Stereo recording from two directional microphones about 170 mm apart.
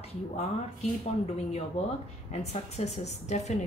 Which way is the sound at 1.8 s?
40° left (ahead or behind).